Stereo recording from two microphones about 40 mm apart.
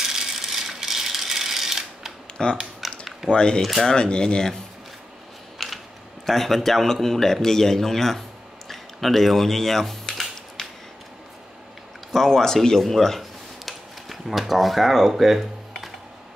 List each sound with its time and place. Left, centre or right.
0.0 s rattle: centre
2.4 s speech: left
2.8 s typing: centre
3.3 s speech: left
5.6 s a sound: centre
6.2 s speech: centre
12.1 s speech: centre
12.6 s a sound: centre